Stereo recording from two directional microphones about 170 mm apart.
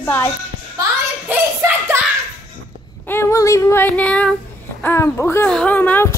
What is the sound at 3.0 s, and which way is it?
Child singing, 15° left (ahead or behind).